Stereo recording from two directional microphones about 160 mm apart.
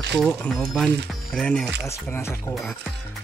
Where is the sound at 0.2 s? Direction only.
5° left (ahead or behind).